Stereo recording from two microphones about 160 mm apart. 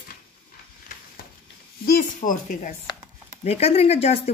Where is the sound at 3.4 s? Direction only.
40° left (ahead or behind).